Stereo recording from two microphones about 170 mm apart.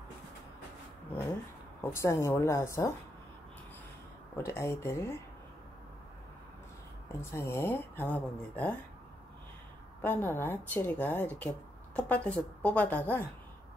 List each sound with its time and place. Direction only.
1.8 s speech: 15° left (ahead or behind)
4.4 s speech: 15° left (ahead or behind)
7.2 s speech: 15° left (ahead or behind)
10.0 s speech: 10° left (ahead or behind)